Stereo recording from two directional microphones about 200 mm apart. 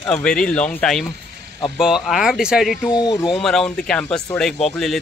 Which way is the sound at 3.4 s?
Centre (ahead or behind).